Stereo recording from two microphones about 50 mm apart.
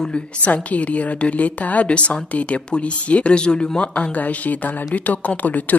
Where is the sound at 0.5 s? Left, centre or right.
Left.